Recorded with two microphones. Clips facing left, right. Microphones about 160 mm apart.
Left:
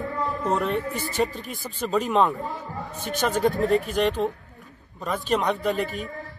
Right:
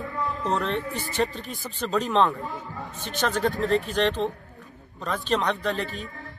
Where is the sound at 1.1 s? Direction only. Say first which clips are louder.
Left 1 dB; 40° left (ahead or behind).